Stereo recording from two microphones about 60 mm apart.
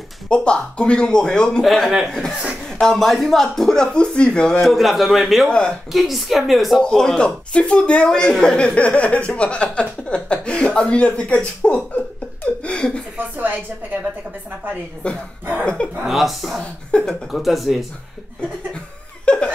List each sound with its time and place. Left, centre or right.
0.3 s speech: centre
1.9 s a man's voice: centre
2.6 s speech: centre
4.6 s a woman's voice: centre
5.5 s speech: centre
5.9 s a woman's voice: centre
6.8 s speech: centre
12.6 s chuckle: centre
13.2 s a sound: right
15.0 s speech: centre
16.1 s a woman's voice: centre
16.9 s speech: centre
17.3 s a woman's voice: centre
19.2 s laughter: centre